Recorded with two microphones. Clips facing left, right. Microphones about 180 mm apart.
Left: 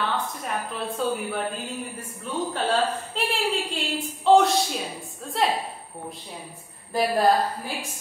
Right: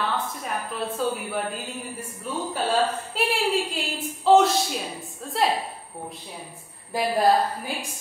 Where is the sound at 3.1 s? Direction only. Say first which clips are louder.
Right 3 dB; 5° right (ahead or behind).